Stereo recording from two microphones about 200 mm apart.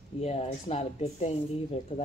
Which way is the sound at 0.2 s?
30° left (ahead or behind).